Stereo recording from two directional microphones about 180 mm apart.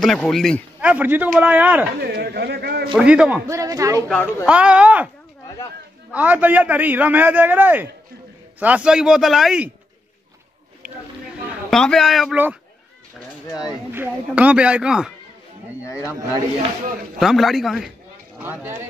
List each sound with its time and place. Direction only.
0.0 s speech: centre (ahead or behind)
0.7 s a man's voice: 10° right (ahead or behind)
2.0 s speech: 60° right (ahead or behind)
2.9 s speech: 5° right (ahead or behind)
3.4 s a man's voice: 15° right (ahead or behind)
4.5 s a man's voice: 5° right (ahead or behind)
6.1 s a man's voice: 10° right (ahead or behind)
11.7 s speech: 5° left (ahead or behind)
13.7 s speech: 10° right (ahead or behind)
15.8 s speech: 15° left (ahead or behind)
17.2 s a man's voice: centre (ahead or behind)